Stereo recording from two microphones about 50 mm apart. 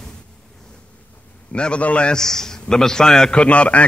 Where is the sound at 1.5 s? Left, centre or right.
Left.